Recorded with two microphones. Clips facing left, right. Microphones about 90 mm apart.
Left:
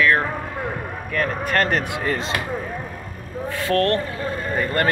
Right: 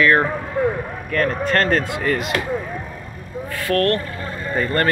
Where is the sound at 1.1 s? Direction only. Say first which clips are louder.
Right 3 dB; 10° left (ahead or behind).